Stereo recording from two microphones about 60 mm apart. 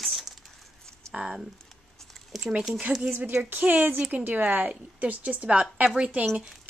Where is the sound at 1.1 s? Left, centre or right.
Centre.